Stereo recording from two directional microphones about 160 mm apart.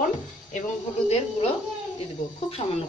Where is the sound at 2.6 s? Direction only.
30° left (ahead or behind).